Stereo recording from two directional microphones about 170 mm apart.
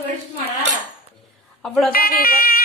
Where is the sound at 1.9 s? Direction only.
60° left (ahead or behind).